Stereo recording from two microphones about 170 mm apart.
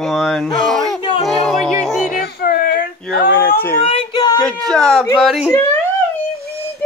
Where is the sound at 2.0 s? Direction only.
55° left (ahead or behind).